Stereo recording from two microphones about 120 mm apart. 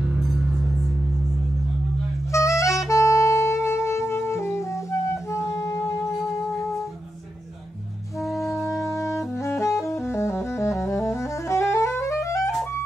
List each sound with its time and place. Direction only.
2.3 s music: 25° left (ahead or behind)
2.9 s saxophone: 25° left (ahead or behind)
8.8 s saxophone: 25° left (ahead or behind)